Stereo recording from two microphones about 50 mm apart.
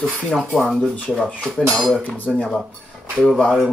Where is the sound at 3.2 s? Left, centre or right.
Centre.